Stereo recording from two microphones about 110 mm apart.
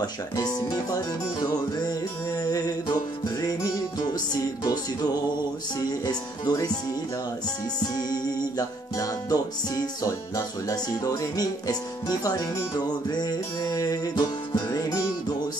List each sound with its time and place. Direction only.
0.0 s speech: 40° left (ahead or behind)
4.6 s music: 35° left (ahead or behind)
7.9 s music: 35° left (ahead or behind)